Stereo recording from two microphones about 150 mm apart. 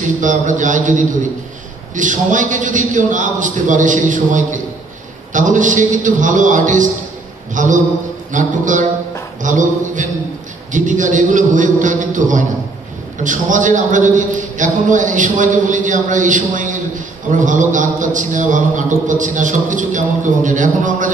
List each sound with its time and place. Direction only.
0.0 s a man's voice: 55° right (ahead or behind)